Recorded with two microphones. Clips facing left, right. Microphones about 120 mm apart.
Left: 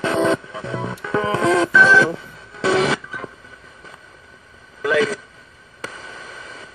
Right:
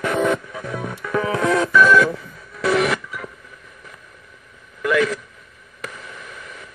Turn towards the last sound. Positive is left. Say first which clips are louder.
# left 1 dB
turn(degrees=30)  # may be behind; listen again after turning